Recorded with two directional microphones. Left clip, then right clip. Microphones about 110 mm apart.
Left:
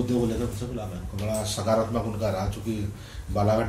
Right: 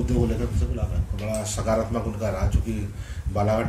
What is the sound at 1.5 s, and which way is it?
Speech, 20° right (ahead or behind).